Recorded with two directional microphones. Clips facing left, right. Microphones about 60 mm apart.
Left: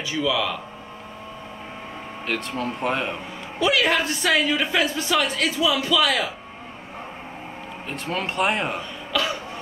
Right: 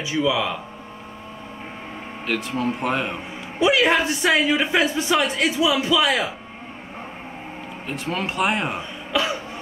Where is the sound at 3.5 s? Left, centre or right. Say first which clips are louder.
Right 3 dB; right.